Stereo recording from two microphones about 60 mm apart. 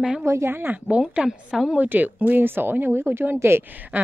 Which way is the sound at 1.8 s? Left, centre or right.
Right.